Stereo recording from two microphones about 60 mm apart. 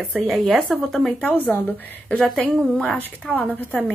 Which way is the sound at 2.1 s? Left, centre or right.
Centre.